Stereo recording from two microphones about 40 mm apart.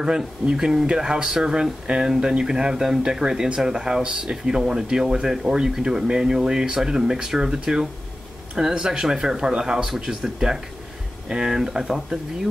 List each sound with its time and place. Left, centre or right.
0.0 s speech: centre